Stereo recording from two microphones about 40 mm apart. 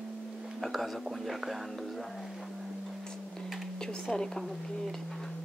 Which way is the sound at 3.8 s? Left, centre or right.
Centre.